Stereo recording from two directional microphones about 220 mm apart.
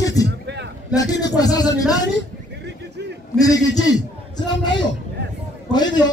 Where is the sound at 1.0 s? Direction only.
15° left (ahead or behind).